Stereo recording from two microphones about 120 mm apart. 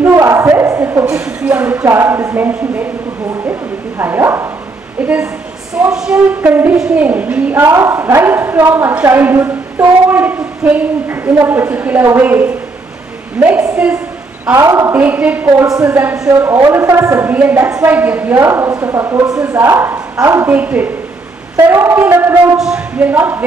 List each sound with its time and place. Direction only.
0.1 s a sound: 25° right (ahead or behind)
1.0 s a woman's voice: 10° right (ahead or behind)
4.0 s a woman's voice: 20° right (ahead or behind)
5.9 s a woman's voice: 5° right (ahead or behind)
7.6 s a woman's voice: 25° right (ahead or behind)
15.4 s a woman's voice: 25° right (ahead or behind)
15.9 s a woman's voice: 15° right (ahead or behind)
22.6 s speech: 5° right (ahead or behind)
23.0 s a woman's voice: 15° right (ahead or behind)